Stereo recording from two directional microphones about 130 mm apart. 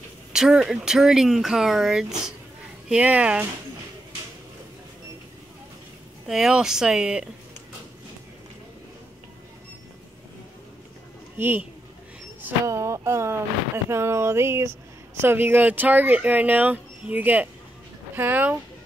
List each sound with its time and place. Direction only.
0.3 s speech: 5° right (ahead or behind)
6.2 s speech: 5° right (ahead or behind)
11.3 s speech: 15° right (ahead or behind)
12.4 s a sound: 20° right (ahead or behind)
13.8 s speech: 20° right (ahead or behind)